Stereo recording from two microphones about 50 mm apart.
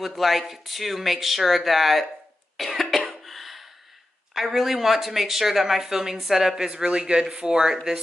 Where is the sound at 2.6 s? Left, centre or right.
Centre.